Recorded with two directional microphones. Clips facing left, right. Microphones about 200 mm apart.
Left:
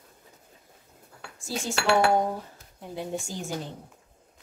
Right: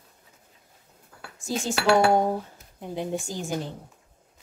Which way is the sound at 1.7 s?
Centre (ahead or behind).